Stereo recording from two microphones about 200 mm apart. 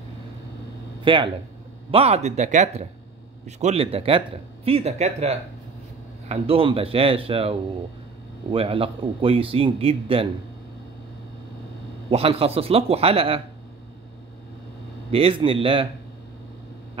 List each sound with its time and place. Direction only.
1.0 s a man's voice: 25° right (ahead or behind)
12.1 s a man's voice: 30° right (ahead or behind)
15.0 s a man's voice: 30° right (ahead or behind)